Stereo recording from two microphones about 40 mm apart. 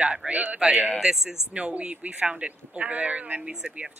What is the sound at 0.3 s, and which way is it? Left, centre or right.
Speech, right.